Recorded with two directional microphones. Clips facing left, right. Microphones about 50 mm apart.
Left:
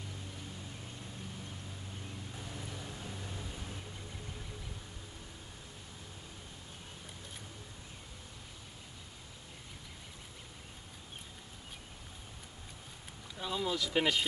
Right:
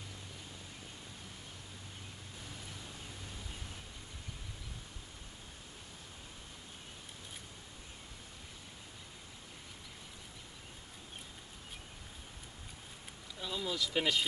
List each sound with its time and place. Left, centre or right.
13.4 s speech: centre